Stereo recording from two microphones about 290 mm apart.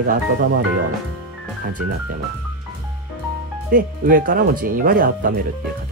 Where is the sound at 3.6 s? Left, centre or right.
Right.